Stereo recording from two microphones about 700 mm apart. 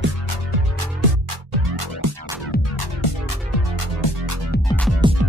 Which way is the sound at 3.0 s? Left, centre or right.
Left.